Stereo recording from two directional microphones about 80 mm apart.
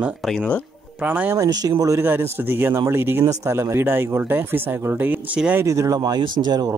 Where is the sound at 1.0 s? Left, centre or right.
Right.